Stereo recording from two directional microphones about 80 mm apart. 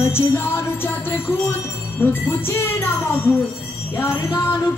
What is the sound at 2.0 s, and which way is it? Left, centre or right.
Music, left.